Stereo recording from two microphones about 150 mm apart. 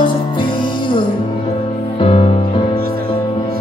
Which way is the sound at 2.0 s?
35° left (ahead or behind).